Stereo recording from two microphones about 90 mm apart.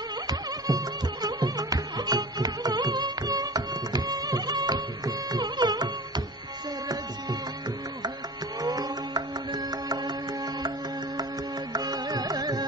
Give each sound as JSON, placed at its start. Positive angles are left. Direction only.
{"t": 0.3, "sound": "music", "side_deg": -45}
{"t": 8.6, "sound": "music", "side_deg": -45}
{"t": 11.7, "sound": "music", "side_deg": -50}